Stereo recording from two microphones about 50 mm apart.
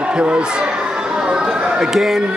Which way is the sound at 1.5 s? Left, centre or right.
Centre.